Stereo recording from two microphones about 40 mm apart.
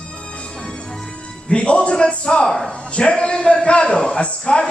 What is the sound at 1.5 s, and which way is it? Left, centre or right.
Speech, left.